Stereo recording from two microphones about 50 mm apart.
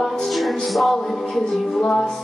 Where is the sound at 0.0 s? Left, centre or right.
Centre.